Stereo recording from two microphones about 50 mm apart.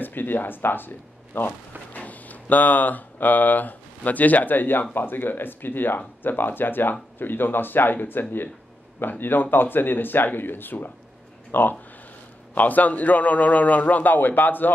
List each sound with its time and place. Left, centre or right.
0.0 s speech: left
2.0 s speech: left